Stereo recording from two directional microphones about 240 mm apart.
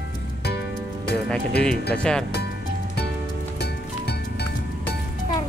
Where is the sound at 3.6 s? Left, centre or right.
Left.